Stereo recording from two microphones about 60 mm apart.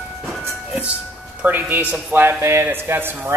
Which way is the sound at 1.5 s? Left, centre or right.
Right.